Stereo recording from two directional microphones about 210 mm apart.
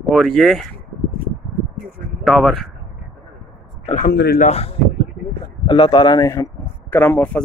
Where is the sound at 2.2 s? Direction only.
Centre (ahead or behind).